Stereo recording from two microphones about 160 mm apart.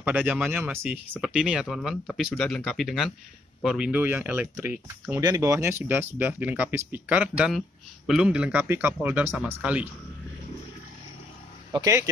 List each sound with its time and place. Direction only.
0.0 s speech: 10° right (ahead or behind)
11.7 s speech: 20° right (ahead or behind)